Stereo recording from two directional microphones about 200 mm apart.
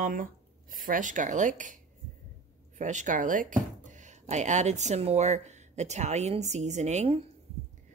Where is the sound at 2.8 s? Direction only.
40° right (ahead or behind).